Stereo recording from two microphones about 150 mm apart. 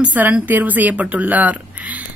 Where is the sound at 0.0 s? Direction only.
10° right (ahead or behind).